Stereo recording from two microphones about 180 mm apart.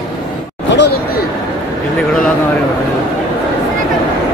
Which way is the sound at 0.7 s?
65° left (ahead or behind).